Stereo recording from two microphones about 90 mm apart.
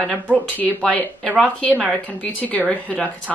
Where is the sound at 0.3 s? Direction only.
15° left (ahead or behind).